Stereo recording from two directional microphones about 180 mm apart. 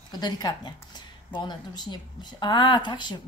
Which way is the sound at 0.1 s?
25° left (ahead or behind).